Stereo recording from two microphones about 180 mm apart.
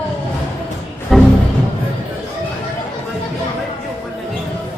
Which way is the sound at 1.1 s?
Centre (ahead or behind).